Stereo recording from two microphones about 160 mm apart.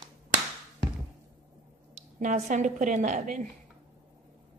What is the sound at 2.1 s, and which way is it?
A woman's voice, 50° right (ahead or behind).